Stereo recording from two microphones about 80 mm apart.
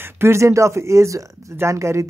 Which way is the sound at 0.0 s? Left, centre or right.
Right.